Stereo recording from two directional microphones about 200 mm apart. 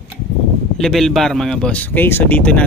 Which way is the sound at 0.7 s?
Centre (ahead or behind).